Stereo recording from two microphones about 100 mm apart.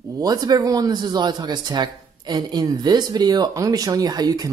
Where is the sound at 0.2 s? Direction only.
40° right (ahead or behind).